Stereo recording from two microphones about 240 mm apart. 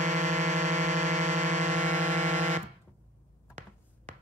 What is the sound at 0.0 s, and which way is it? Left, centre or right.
Music, right.